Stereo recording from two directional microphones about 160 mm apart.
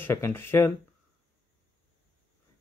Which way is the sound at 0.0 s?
15° left (ahead or behind).